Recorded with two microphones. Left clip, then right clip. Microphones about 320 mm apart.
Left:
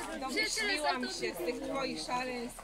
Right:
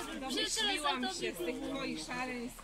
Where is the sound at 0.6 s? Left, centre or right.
Left.